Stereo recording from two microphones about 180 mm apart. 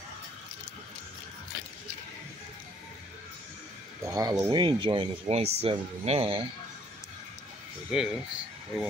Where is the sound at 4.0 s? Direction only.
20° right (ahead or behind).